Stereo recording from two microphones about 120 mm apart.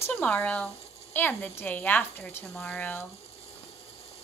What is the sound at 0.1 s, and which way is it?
A woman's voice, 15° left (ahead or behind).